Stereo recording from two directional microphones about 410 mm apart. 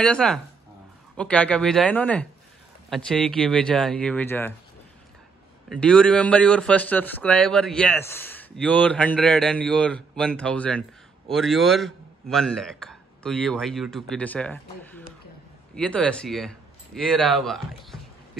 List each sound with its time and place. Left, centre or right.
0.0 s a man's voice: centre
5.7 s a man's voice: centre